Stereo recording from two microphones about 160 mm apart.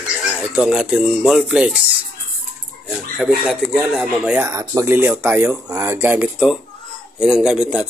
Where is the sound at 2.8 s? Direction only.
Centre (ahead or behind).